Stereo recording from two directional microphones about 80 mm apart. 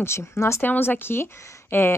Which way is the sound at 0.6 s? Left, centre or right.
Left.